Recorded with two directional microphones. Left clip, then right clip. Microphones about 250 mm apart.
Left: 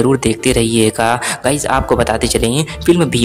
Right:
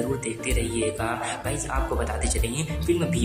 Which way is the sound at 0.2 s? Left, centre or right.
Left.